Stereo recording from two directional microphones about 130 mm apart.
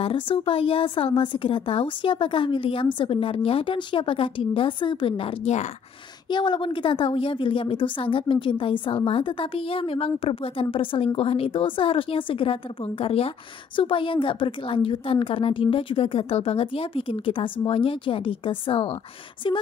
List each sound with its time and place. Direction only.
0.0 s speech: 45° left (ahead or behind)
6.2 s a woman's voice: 35° left (ahead or behind)